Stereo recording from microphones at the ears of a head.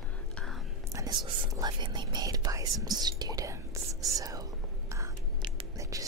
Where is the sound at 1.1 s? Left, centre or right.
Right.